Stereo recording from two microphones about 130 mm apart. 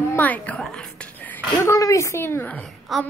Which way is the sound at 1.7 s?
25° left (ahead or behind).